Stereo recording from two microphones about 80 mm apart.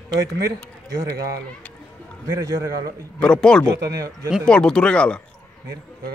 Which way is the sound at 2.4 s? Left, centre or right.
Right.